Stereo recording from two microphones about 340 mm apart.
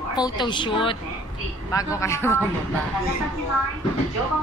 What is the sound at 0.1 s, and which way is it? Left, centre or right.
A woman's voice, centre.